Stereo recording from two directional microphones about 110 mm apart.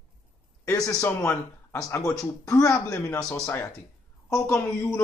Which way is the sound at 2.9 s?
25° left (ahead or behind).